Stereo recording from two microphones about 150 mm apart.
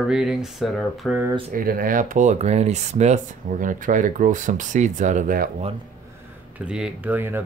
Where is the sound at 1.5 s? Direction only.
75° right (ahead or behind).